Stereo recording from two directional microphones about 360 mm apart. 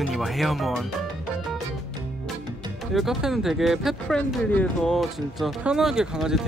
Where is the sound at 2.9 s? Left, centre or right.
Centre.